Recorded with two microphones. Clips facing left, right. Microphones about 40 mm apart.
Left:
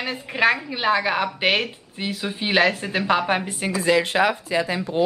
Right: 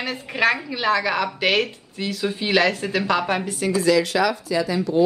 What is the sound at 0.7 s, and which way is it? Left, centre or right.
A woman's voice, centre.